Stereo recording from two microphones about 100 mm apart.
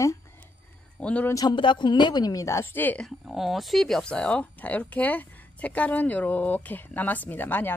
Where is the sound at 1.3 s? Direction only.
40° left (ahead or behind).